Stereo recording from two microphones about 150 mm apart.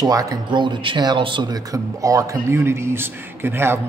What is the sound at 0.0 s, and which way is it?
A man's voice, 25° right (ahead or behind).